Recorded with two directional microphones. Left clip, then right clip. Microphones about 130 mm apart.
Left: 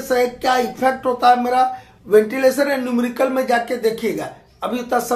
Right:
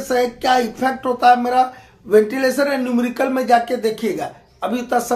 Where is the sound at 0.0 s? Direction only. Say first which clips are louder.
Even; 35° right (ahead or behind).